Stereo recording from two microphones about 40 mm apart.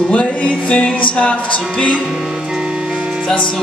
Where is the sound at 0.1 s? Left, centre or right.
Left.